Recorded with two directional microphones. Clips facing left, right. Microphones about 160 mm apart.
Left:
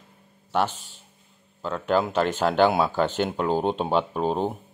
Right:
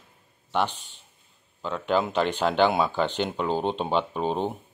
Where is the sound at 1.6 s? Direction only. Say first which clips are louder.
Left 2 dB; 5° left (ahead or behind).